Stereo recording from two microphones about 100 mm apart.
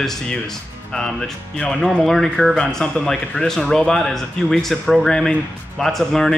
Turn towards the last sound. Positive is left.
turn(degrees=5)  # may be behind; listen again after turning